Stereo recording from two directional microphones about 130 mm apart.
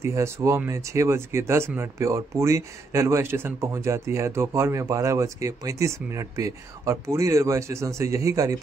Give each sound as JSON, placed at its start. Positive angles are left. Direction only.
{"t": 0.0, "sound": "speech", "side_deg": -20}